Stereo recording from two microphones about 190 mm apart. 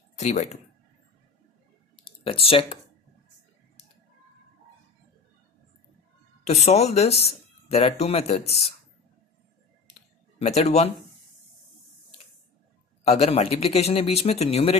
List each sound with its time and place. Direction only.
0.2 s speech: 35° left (ahead or behind)
2.0 s speech: 30° left (ahead or behind)
6.4 s speech: 35° left (ahead or behind)
10.4 s speech: 35° left (ahead or behind)
13.1 s speech: 35° left (ahead or behind)